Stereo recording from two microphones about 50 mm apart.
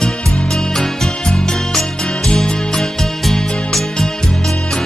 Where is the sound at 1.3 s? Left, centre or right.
Centre.